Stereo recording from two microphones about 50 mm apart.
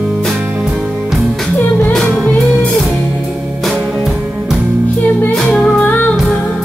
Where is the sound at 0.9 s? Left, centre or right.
Centre.